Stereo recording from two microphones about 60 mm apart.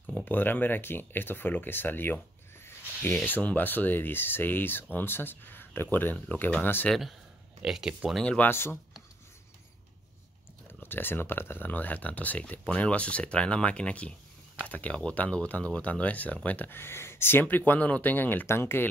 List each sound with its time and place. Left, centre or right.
0.1 s speech: left
2.6 s a sound: left
3.3 s speech: left
7.6 s speech: centre
8.5 s speech: left
10.7 s speech: left
18.5 s speech: left